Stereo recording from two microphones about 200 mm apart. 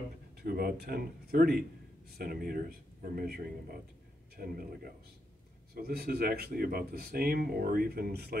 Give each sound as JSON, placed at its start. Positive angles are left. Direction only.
{"t": 0.4, "sound": "speech", "side_deg": -50}